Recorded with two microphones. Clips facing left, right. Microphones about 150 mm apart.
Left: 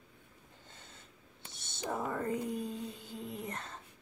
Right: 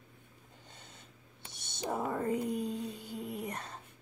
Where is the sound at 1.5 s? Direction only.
15° right (ahead or behind).